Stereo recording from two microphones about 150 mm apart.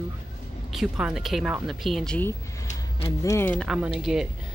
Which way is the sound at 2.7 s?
40° left (ahead or behind).